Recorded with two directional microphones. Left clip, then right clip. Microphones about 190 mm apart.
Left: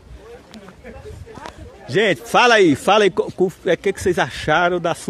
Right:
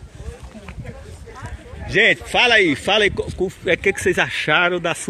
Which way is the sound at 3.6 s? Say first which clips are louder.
Right 1 dB; 5° left (ahead or behind).